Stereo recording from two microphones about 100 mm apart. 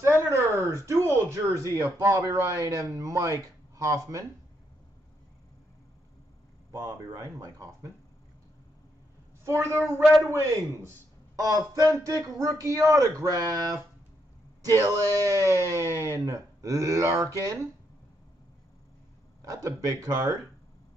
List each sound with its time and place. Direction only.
0.0 s a sound: 30° right (ahead or behind)
2.0 s speech: 35° right (ahead or behind)
6.7 s speech: 40° right (ahead or behind)
9.4 s a woman's voice: 30° right (ahead or behind)
11.3 s speech: 35° right (ahead or behind)
14.9 s speech: 35° right (ahead or behind)
19.5 s speech: 35° right (ahead or behind)